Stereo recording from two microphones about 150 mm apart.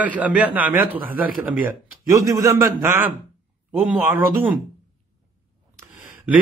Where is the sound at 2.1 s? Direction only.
20° right (ahead or behind).